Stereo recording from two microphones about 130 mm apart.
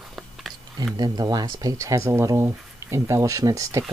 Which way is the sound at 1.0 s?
30° right (ahead or behind).